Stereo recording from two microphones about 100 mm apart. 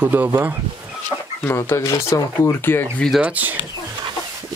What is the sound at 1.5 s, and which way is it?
Speech, 25° left (ahead or behind).